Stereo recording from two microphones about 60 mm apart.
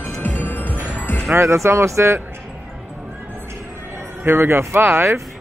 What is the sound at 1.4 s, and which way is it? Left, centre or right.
Speech, right.